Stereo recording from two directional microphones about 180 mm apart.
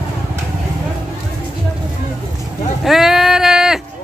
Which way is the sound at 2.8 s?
Centre (ahead or behind).